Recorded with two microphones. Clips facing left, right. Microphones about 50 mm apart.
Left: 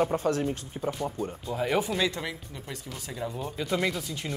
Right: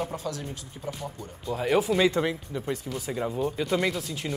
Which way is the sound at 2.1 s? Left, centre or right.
Right.